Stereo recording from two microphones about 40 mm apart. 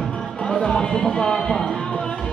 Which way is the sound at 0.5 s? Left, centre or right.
Left.